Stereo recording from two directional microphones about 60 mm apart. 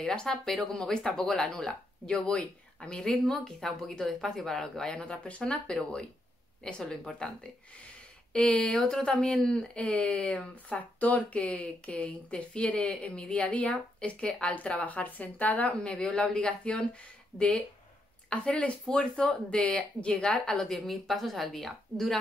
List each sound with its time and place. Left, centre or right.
0.0 s speech: centre